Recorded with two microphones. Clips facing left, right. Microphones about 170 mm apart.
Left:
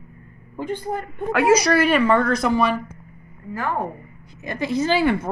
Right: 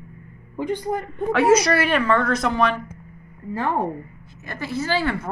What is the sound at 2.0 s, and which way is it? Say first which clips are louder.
Speech: left 2 dB; 15° left (ahead or behind).